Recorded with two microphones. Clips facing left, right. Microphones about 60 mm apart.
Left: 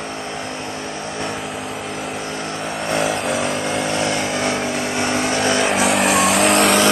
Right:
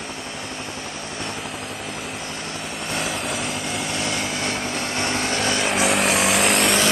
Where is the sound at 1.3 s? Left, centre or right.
Centre.